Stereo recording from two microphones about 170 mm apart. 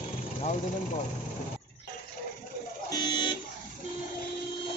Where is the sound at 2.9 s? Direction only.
25° left (ahead or behind).